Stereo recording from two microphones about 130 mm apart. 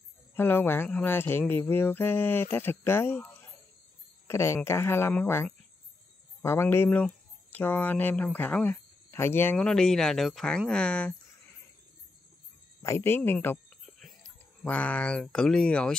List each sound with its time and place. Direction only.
0.4 s speech: 15° left (ahead or behind)
9.7 s speech: 5° left (ahead or behind)
12.8 s speech: 20° left (ahead or behind)
13.8 s speech: 5° left (ahead or behind)